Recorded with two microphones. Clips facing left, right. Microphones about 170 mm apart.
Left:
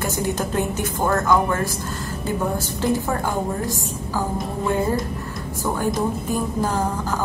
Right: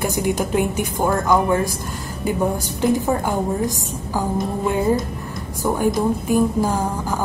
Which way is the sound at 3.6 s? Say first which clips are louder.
Right 3 dB; 15° right (ahead or behind).